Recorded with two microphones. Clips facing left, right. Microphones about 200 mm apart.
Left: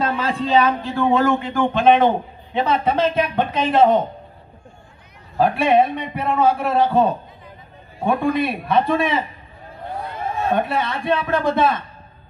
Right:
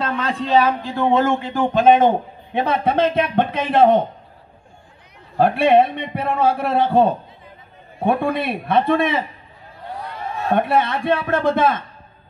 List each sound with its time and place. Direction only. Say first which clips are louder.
0.0 s speech: left 1 dB; 5° left (ahead or behind); by 1.0 s 10° right (ahead or behind)
1.1 s a man's voice: even; 25° right (ahead or behind); by 3.9 s 55° right (ahead or behind)
5.4 s a man's voice: right 2 dB; 55° right (ahead or behind)
10.5 s a man's voice: right 5 dB; 55° right (ahead or behind)